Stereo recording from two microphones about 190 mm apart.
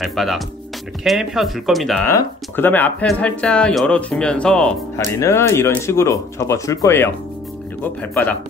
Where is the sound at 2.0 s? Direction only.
10° left (ahead or behind).